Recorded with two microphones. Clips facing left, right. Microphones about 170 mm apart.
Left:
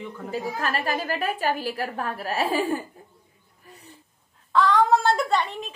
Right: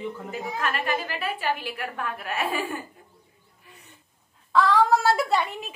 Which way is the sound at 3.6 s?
35° left (ahead or behind).